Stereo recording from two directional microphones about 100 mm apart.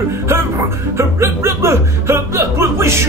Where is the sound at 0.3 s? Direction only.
25° right (ahead or behind).